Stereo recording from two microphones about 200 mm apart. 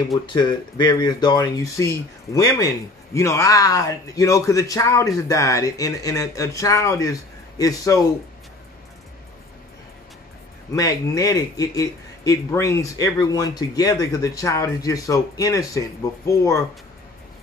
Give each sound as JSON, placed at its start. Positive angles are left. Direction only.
{"t": 0.3, "sound": "speech", "side_deg": 20}
{"t": 10.7, "sound": "speech", "side_deg": 15}